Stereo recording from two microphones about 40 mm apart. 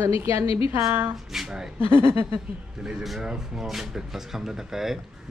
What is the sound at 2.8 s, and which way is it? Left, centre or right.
Speech, centre.